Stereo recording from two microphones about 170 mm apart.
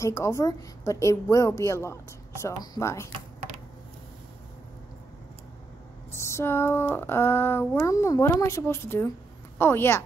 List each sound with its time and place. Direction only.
0.0 s speech: 15° left (ahead or behind)
6.1 s speech: 15° left (ahead or behind)